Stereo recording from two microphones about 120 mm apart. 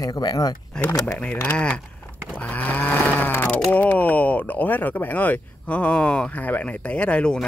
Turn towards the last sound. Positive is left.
turn(degrees=5)  # may be behind; listen again after turning